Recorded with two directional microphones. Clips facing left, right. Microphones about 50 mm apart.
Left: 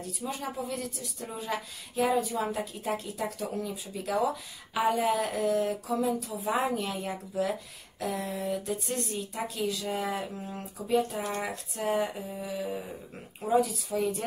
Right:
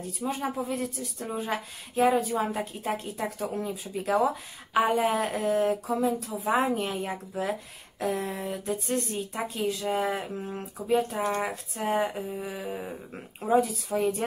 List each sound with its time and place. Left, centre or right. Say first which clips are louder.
0.2 s speech: right 5 dB; right